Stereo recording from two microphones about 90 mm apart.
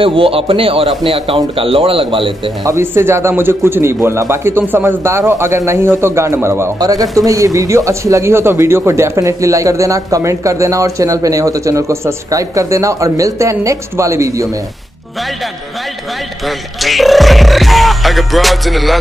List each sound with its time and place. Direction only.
0.0 s a man's voice: 85° right
2.6 s a man's voice: 30° right (ahead or behind)
6.8 s speech: 40° right (ahead or behind)
16.4 s speech: centre (ahead or behind)